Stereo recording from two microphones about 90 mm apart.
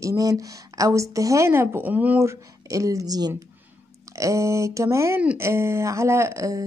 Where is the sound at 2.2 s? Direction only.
40° right (ahead or behind).